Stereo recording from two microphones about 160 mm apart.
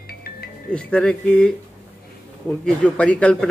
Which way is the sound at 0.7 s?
5° left (ahead or behind).